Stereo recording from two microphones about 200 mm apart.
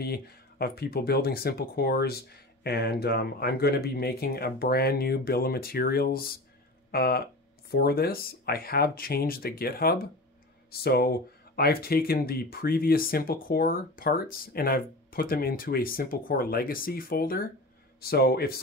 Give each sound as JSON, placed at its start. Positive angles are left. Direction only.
{"t": 0.0, "sound": "speech", "side_deg": 50}